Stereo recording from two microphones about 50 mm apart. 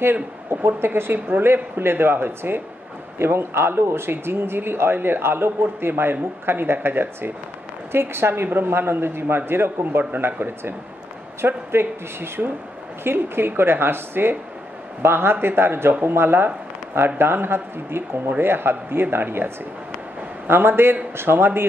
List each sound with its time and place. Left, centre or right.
0.0 s speech: right